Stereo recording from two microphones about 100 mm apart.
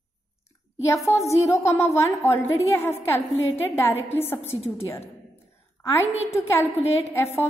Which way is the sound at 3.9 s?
90° left.